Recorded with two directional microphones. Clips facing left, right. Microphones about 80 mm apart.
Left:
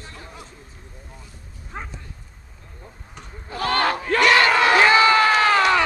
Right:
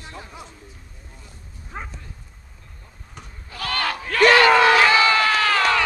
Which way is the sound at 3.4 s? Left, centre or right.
Left.